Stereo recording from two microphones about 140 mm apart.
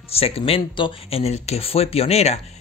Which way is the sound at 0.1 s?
45° left (ahead or behind).